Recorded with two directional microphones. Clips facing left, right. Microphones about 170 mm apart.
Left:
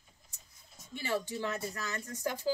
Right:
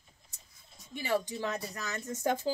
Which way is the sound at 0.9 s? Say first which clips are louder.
Right 3 dB; 15° right (ahead or behind).